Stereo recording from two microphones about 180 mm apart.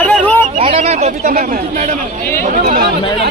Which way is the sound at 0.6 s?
35° right (ahead or behind).